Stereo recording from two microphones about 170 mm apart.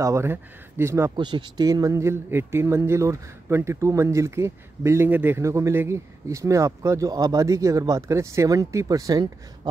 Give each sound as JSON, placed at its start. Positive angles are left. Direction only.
{"t": 0.0, "sound": "speech", "side_deg": -15}
{"t": 1.1, "sound": "speech", "side_deg": -25}